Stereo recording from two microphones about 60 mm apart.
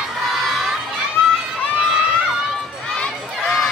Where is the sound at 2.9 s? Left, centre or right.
Centre.